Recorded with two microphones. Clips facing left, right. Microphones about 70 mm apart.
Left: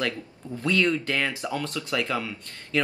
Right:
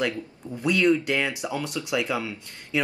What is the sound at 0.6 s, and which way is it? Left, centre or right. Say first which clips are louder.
Speech: right 3 dB; centre.